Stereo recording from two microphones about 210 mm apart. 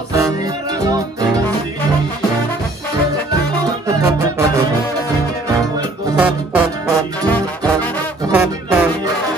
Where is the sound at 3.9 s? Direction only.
15° right (ahead or behind).